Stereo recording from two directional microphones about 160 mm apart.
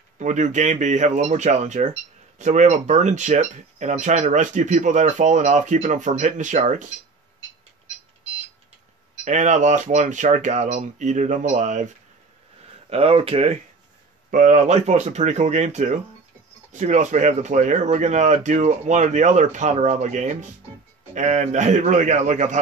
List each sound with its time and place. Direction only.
0.2 s speech: 50° right (ahead or behind)
9.2 s speech: 50° right (ahead or behind)
12.9 s speech: 35° right (ahead or behind)
14.3 s speech: 50° right (ahead or behind)